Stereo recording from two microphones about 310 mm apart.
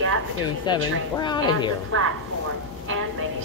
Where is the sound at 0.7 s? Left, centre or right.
Centre.